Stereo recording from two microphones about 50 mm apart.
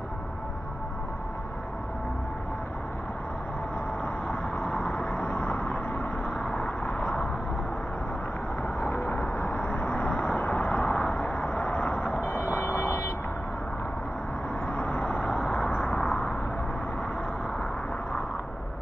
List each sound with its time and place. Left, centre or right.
4.0 s vehicle: left
9.1 s vehicle: left
12.5 s vehicle: left
14.7 s vehicle: left
16.1 s a sound: left